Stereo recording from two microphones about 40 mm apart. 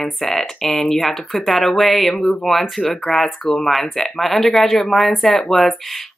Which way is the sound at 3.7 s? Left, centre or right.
Centre.